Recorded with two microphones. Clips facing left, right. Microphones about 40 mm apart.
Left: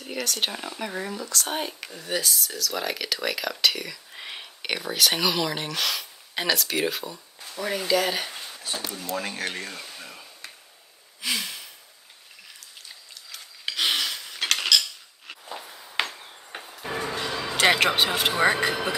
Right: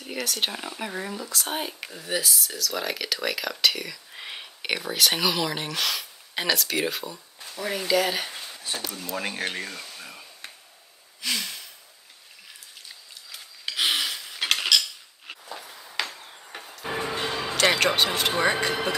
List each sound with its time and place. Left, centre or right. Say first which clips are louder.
0.0 s speech: even; centre
9.2 s speech: right 1 dB; centre
9.5 s a sound: right 1 dB; centre
11.1 s sigh: left 1 dB; centre
13.7 s cutlery: even; centre
15.4 s walk: left 2 dB; centre
16.0 s a sound: left 3 dB; left
16.6 s music: right 1 dB; centre
17.1 s music: right 1 dB; right
17.6 s a man's voice: left 1 dB; centre
18.4 s speech: left 3 dB; left